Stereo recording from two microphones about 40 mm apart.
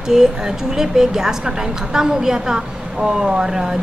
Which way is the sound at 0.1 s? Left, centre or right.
Centre.